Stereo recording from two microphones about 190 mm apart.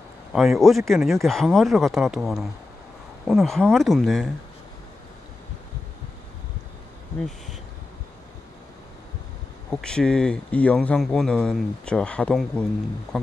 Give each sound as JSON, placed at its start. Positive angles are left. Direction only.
{"t": 0.3, "sound": "speech", "side_deg": 0}
{"t": 9.7, "sound": "speech", "side_deg": 5}